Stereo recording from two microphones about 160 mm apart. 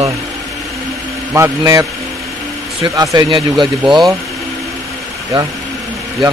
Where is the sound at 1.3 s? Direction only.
20° right (ahead or behind).